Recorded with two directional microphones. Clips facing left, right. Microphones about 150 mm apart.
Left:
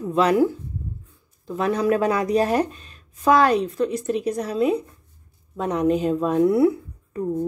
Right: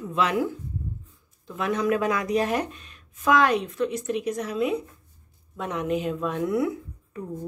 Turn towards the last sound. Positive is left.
turn(degrees=35)  # may be behind; listen again after turning